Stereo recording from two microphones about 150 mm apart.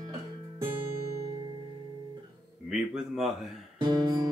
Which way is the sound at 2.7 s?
5° right (ahead or behind).